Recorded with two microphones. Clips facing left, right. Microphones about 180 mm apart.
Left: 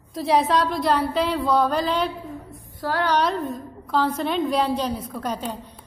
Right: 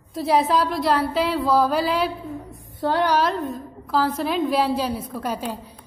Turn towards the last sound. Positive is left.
turn(degrees=-5)  # may be behind; listen again after turning